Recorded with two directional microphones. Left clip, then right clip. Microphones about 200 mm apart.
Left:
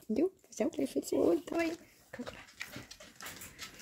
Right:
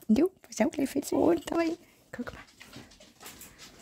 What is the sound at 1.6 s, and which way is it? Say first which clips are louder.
Speech: right 5 dB; 35° right (ahead or behind).